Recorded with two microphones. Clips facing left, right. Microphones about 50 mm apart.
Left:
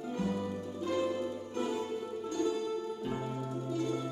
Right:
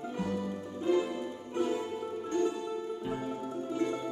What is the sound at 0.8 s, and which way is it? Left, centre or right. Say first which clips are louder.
Music: right 3 dB; centre.